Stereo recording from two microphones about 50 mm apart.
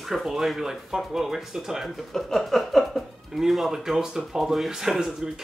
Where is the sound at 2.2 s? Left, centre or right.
Centre.